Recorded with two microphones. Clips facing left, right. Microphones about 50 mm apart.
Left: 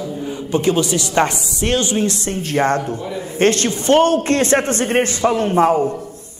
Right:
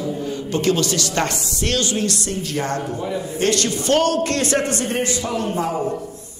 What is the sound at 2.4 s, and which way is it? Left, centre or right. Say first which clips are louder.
A man's voice: left 9 dB; left.